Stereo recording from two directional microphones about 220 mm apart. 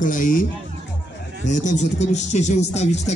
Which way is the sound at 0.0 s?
35° left (ahead or behind).